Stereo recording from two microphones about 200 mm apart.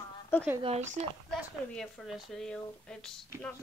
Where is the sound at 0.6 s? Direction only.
35° right (ahead or behind).